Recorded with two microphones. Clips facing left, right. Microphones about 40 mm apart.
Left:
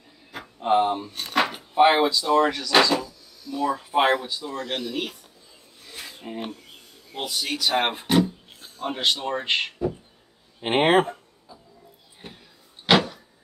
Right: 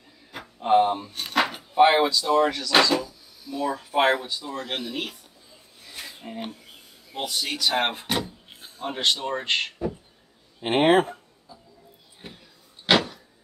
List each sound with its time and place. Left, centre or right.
0.3 s speech: centre
5.9 s a sound: centre
7.2 s speech: centre
8.5 s a sound: centre
8.8 s speech: centre
10.6 s speech: left
12.8 s vehicle: centre